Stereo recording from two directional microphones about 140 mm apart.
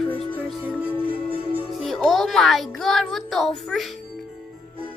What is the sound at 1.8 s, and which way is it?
A child's voice, centre (ahead or behind).